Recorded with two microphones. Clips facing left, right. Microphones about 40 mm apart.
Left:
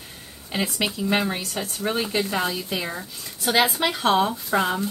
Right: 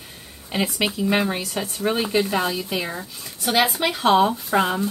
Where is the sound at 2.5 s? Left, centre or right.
Right.